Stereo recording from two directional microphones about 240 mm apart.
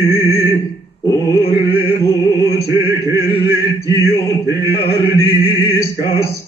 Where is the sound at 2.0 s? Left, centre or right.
Centre.